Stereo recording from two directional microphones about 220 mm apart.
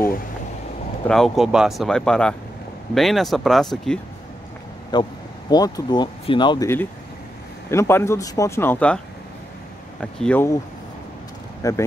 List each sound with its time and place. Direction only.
1.0 s speech: centre (ahead or behind)
4.9 s speech: 20° left (ahead or behind)
11.6 s speech: 15° left (ahead or behind)